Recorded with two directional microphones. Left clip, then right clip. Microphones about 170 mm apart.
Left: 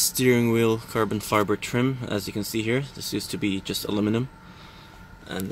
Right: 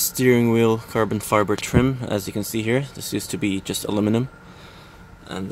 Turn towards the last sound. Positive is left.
turn(degrees=-20)  # may be behind; listen again after turning